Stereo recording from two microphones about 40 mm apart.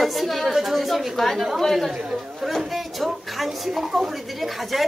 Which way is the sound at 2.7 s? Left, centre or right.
Centre.